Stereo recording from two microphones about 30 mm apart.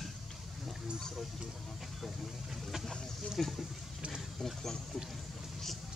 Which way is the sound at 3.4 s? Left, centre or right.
Centre.